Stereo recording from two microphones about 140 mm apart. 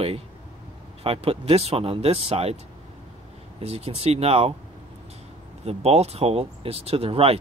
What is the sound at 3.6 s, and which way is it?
Speech, 45° right (ahead or behind).